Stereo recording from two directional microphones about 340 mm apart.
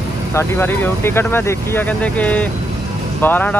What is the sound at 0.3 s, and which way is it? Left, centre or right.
Speech, centre.